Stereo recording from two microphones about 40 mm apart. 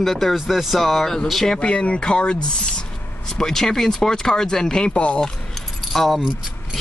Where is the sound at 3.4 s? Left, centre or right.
Centre; by 5.2 s left.